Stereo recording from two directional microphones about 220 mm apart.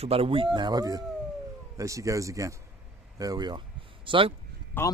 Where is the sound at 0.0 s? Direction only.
25° right (ahead or behind).